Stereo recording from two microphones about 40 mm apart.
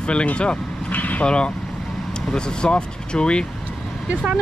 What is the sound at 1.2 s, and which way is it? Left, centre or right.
Speech, left.